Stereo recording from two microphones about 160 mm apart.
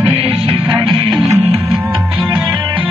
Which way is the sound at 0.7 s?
25° right (ahead or behind).